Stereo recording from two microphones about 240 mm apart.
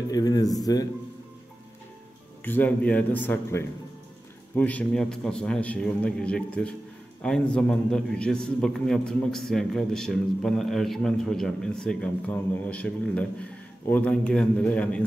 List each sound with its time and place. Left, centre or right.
0.1 s speech: centre
2.4 s a man's voice: centre